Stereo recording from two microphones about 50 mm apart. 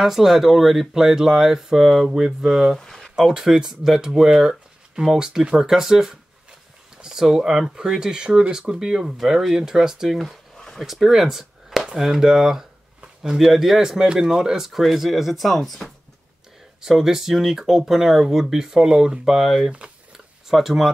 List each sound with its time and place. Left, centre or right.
0.0 s speech: centre
2.8 s a sound: centre
3.2 s speech: centre